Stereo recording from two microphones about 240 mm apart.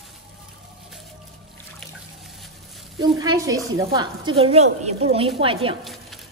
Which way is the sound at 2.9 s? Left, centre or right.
Centre.